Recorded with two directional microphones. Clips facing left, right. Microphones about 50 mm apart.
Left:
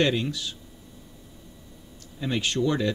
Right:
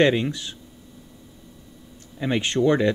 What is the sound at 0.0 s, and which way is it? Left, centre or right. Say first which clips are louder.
Speech: right 5 dB; right.